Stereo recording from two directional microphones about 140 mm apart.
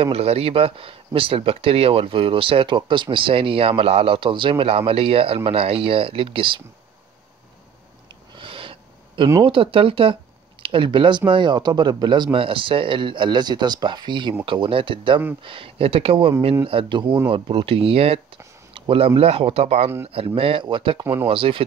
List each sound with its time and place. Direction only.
0.0 s speech: 45° right (ahead or behind)
8.4 s a sound: 40° right (ahead or behind)
9.4 s speech: 40° right (ahead or behind)